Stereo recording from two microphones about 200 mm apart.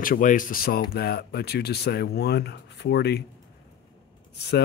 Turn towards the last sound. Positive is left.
turn(degrees=55)  # may be behind; listen again after turning